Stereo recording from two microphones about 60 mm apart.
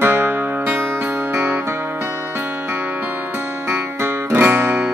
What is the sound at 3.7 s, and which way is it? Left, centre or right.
Music, right.